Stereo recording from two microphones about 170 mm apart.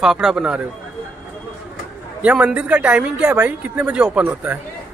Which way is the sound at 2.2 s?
10° right (ahead or behind).